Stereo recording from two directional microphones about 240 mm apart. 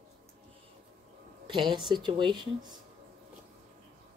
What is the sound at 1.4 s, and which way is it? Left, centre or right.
A woman's voice, centre.